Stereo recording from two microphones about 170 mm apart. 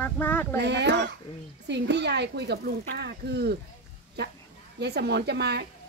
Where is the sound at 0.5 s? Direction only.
85° right.